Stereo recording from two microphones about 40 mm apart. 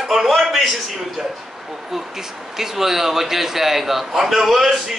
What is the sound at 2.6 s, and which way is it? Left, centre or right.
A man's voice, centre.